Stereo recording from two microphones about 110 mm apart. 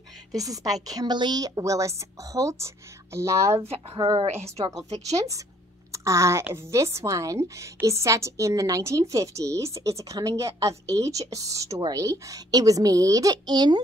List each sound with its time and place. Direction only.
0.4 s a woman's voice: 35° right (ahead or behind)
3.6 s a woman's voice: 60° right (ahead or behind)
4.8 s a woman's voice: 80° right
5.1 s a woman's voice: 30° right (ahead or behind)